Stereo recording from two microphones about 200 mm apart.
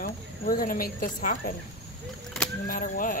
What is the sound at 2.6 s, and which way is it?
Speech, 45° left (ahead or behind).